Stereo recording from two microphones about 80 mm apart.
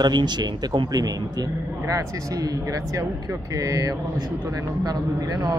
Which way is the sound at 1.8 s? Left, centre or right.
Right.